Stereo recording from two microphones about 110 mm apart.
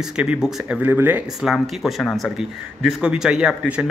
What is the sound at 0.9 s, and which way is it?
Speech, 20° right (ahead or behind).